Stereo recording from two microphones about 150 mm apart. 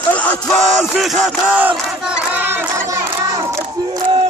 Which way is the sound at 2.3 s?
15° right (ahead or behind).